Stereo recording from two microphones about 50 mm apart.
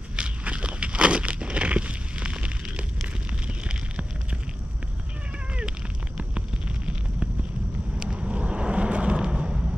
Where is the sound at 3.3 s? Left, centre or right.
Right.